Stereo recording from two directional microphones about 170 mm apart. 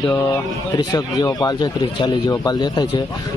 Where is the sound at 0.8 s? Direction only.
25° left (ahead or behind).